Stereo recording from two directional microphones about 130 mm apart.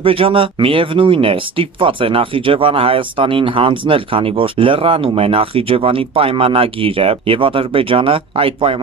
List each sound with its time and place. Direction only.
0.0 s speech: 45° right (ahead or behind)